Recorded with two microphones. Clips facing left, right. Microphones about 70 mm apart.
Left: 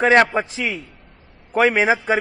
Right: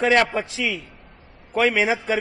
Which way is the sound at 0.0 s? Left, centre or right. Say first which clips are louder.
Left 4 dB; left.